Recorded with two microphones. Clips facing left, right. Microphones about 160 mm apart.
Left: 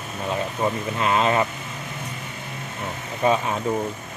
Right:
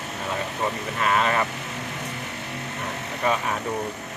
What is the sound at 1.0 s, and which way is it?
Speech, 25° left (ahead or behind).